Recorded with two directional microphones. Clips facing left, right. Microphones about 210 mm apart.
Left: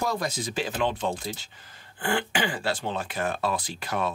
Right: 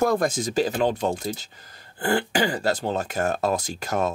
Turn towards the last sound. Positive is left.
turn(degrees=-45)  # may be behind; listen again after turning